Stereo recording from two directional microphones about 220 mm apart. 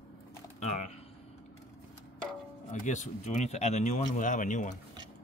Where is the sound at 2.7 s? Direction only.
35° left (ahead or behind).